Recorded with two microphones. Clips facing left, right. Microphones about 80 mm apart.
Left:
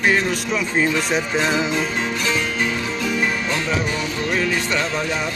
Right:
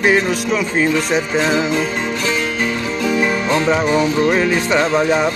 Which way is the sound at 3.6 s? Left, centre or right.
Right.